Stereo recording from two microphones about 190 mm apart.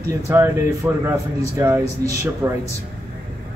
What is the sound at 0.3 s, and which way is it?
Speech, 15° right (ahead or behind).